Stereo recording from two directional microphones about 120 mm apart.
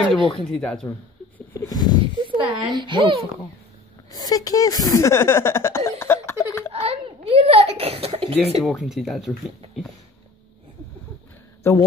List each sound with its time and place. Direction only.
0.5 s speech: 5° left (ahead or behind)
1.5 s a sound: 30° left (ahead or behind)
2.3 s a woman's voice: 45° right (ahead or behind)
4.1 s speech: 30° left (ahead or behind)
6.7 s a sound: 55° right (ahead or behind)
8.6 s speech: centre (ahead or behind)
11.6 s a man's voice: 20° left (ahead or behind)